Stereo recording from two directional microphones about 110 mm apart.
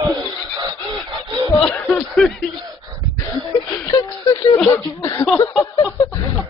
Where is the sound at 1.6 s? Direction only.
5° left (ahead or behind).